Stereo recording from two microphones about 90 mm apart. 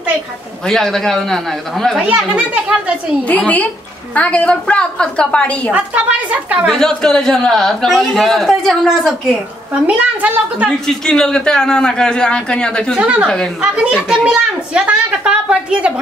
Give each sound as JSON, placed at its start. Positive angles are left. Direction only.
{"t": 0.7, "sound": "a man's voice", "side_deg": 5}
{"t": 2.0, "sound": "a woman's voice", "side_deg": -15}
{"t": 3.3, "sound": "a man's voice", "side_deg": 15}
{"t": 5.7, "sound": "a woman's voice", "side_deg": -15}
{"t": 6.7, "sound": "a man's voice", "side_deg": 5}
{"t": 9.8, "sound": "a woman's voice", "side_deg": -15}
{"t": 10.9, "sound": "a man's voice", "side_deg": 5}
{"t": 12.9, "sound": "a woman's voice", "side_deg": -10}